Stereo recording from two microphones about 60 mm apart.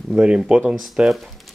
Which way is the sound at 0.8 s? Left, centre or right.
Centre.